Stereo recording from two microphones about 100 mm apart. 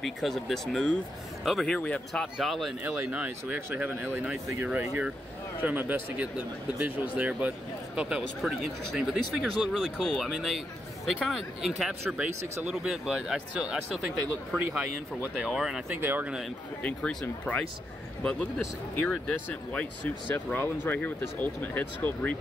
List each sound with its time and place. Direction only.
0.0 s speech: centre (ahead or behind)
1.8 s speech: 10° left (ahead or behind)
2.3 s speech: centre (ahead or behind)
2.8 s speech: 15° right (ahead or behind)
15.9 s speech: 20° right (ahead or behind)
16.8 s speech: 5° left (ahead or behind)
20.3 s speech: 20° left (ahead or behind)